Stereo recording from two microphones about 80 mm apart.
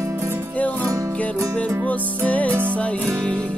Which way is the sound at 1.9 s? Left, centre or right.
Centre.